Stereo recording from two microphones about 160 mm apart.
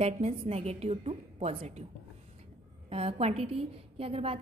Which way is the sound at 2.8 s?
40° right (ahead or behind).